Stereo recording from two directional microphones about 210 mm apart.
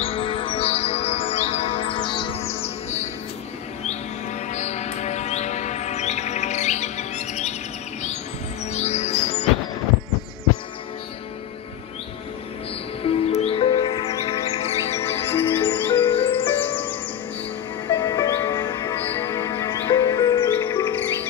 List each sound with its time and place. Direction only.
0.0 s music: 25° left (ahead or behind)
4.5 s chirp: 35° left (ahead or behind)
8.7 s music: 30° left (ahead or behind)
13.4 s music: 25° left (ahead or behind)
15.0 s music: 10° left (ahead or behind)